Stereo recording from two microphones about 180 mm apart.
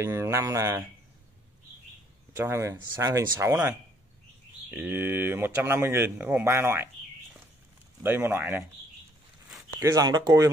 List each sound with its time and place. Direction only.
0.0 s speech: 15° right (ahead or behind)
2.3 s speech: 15° right (ahead or behind)
8.0 s speech: 10° right (ahead or behind)
9.8 s speech: 20° right (ahead or behind)